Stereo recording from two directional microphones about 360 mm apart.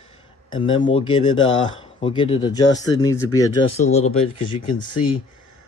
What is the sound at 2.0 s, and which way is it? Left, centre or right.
Speech, centre.